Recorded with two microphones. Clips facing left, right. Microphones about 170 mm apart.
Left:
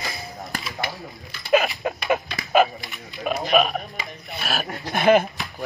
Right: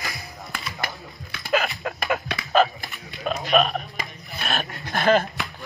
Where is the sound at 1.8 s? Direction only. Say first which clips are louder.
Left 4 dB; 20° left (ahead or behind).